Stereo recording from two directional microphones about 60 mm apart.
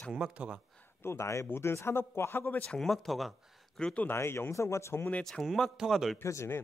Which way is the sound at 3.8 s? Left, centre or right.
Centre.